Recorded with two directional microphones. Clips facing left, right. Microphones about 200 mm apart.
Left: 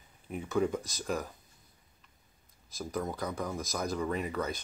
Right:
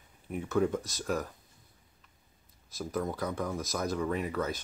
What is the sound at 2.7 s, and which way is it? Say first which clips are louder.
Speech: right 2 dB; 5° right (ahead or behind).